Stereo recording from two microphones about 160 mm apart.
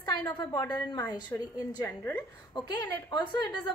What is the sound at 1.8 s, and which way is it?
Speech, 15° left (ahead or behind).